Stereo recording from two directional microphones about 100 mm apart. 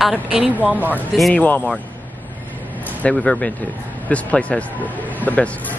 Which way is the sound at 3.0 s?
5° left (ahead or behind).